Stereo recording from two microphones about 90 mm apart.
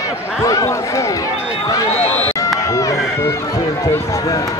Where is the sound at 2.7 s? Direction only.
35° left (ahead or behind).